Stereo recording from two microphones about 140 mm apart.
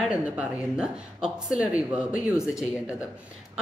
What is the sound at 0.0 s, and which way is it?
A woman's voice, 10° right (ahead or behind).